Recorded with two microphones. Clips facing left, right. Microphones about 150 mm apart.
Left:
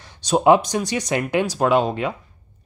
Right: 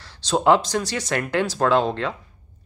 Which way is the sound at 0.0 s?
15° left (ahead or behind).